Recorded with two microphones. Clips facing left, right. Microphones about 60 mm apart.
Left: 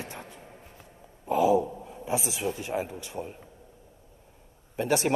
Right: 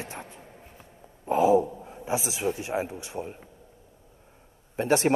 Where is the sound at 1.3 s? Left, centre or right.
Right.